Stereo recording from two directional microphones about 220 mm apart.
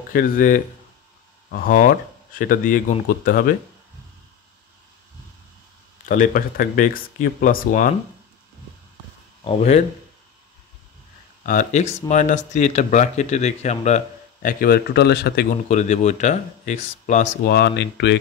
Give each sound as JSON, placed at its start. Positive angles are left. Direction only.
{"t": 0.1, "sound": "speech", "side_deg": 40}
{"t": 6.0, "sound": "speech", "side_deg": 40}
{"t": 9.4, "sound": "speech", "side_deg": 25}
{"t": 11.4, "sound": "speech", "side_deg": 35}
{"t": 15.7, "sound": "speech", "side_deg": 30}
{"t": 17.5, "sound": "speech", "side_deg": 45}